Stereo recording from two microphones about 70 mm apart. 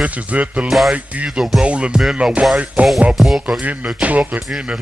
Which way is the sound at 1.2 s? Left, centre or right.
Centre.